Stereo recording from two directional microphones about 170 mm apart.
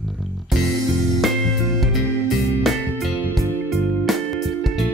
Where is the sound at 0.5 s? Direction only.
Centre (ahead or behind).